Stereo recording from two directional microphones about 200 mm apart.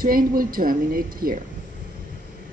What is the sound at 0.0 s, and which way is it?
A woman's voice, 45° right (ahead or behind).